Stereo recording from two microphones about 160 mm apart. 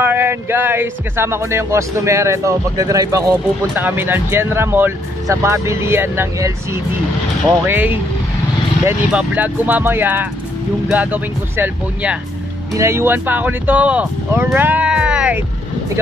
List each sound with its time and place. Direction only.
0.0 s speech: 15° right (ahead or behind)
9.1 s speech: 10° right (ahead or behind)